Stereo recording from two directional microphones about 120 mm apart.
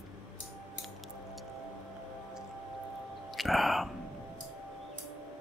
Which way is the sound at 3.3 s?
Centre (ahead or behind).